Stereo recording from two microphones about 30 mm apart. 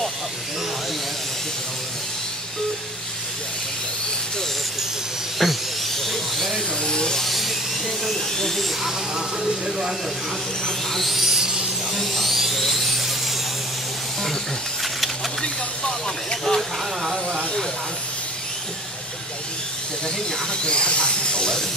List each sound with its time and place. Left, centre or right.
5.4 s speech: centre
6.8 s speech: left
7.2 s a sound: centre
8.0 s speech: centre
8.8 s speech: centre
11.2 s a sound: right
11.9 s speech: centre
12.3 s electric toothbrush: centre
15.8 s vehicle: left
17.0 s a sound: centre
20.6 s speech: left